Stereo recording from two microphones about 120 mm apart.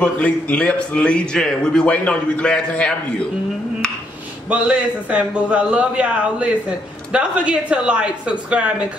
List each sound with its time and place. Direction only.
0.0 s a man's voice: 10° left (ahead or behind)
4.5 s a man's voice: 10° right (ahead or behind)